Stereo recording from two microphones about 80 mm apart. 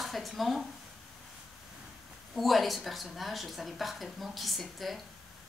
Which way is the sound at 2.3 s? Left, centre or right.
Centre.